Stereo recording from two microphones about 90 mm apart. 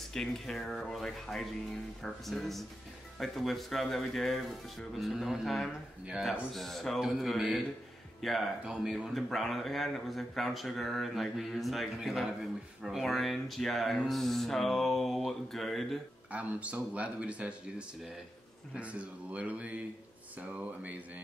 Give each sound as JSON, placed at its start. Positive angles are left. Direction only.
{"t": 0.1, "sound": "speech", "side_deg": 5}
{"t": 16.3, "sound": "speech", "side_deg": -15}